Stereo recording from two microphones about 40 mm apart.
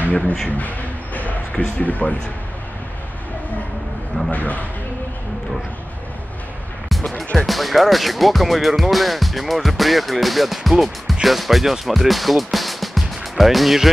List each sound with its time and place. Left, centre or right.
0.5 s train: left
1.8 s speech: left
4.3 s speech: left
7.0 s music: centre
7.3 s speech: centre